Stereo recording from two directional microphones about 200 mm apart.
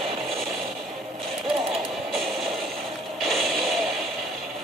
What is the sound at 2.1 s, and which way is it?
Music, centre (ahead or behind).